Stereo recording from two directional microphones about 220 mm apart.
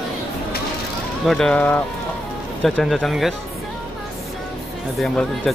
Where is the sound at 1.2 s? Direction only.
Centre (ahead or behind).